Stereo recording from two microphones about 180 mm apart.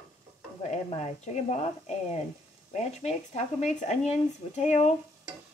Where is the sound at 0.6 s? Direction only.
40° left (ahead or behind).